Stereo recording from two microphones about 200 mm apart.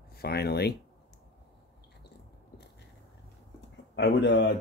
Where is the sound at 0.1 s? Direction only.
50° left (ahead or behind).